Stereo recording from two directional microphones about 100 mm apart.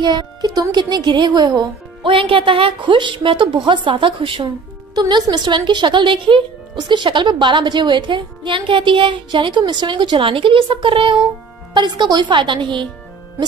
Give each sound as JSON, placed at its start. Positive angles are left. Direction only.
{"t": 0.0, "sound": "a child's voice", "side_deg": -45}
{"t": 2.0, "sound": "a woman's voice", "side_deg": -65}
{"t": 4.9, "sound": "speech", "side_deg": -45}
{"t": 11.7, "sound": "speech", "side_deg": -45}